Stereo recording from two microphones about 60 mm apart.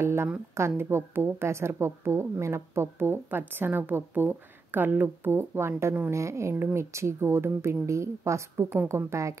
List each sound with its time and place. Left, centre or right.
0.0 s a woman's voice: right